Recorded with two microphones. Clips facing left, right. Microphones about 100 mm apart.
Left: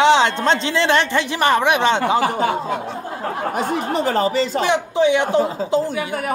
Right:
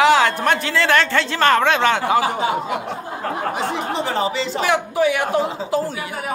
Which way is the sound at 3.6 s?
50° left (ahead or behind).